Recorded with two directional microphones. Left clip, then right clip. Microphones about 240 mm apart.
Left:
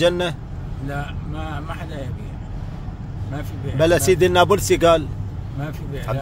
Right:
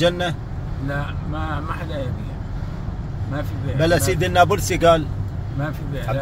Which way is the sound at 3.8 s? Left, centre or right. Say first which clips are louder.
Left 3 dB; left.